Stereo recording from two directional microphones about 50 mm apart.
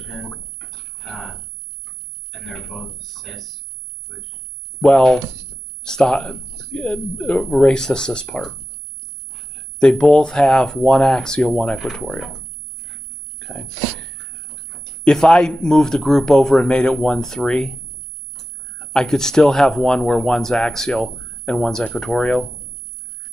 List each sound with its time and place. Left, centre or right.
0.0 s rodents: centre
0.7 s a sound: centre
2.3 s speech: centre
3.2 s speech: centre
4.8 s speech: centre
9.5 s speech: centre
11.8 s speech: centre
13.4 s speech: centre
21.2 s a sound: centre
21.9 s speech: centre